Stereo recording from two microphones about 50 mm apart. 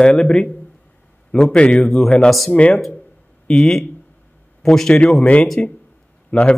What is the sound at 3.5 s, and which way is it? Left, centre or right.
A man's voice, centre.